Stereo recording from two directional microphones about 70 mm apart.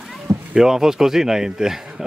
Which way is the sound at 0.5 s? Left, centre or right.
Centre.